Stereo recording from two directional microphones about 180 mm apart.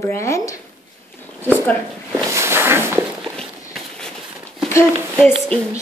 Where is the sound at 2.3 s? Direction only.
15° right (ahead or behind).